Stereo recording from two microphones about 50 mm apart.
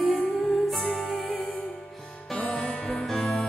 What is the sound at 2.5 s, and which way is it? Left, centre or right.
Music, centre.